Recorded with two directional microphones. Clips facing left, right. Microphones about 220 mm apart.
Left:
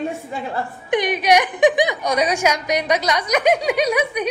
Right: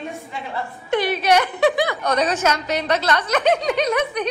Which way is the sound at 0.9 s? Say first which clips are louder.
Left 1 dB; 15° left (ahead or behind).